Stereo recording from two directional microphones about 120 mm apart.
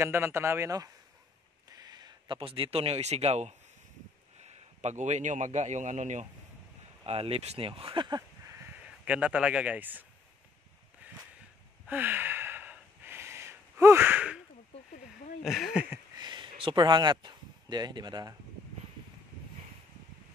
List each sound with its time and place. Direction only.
0.0 s a man's voice: 20° right (ahead or behind); by 6.2 s 85° right
7.1 s speech: 55° right (ahead or behind)
8.5 s a sound: 20° right (ahead or behind)
11.9 s gasp: 15° right (ahead or behind)
15.4 s speech: centre (ahead or behind)
16.2 s speech: 40° right (ahead or behind)